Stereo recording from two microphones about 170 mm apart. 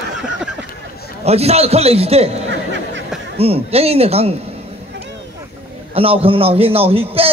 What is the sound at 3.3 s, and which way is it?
A man's voice, 35° right (ahead or behind).